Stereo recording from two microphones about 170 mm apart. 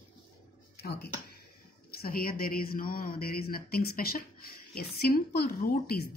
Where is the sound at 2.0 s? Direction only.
60° left (ahead or behind).